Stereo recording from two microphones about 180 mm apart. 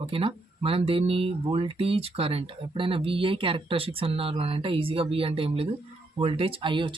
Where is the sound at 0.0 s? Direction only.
30° right (ahead or behind).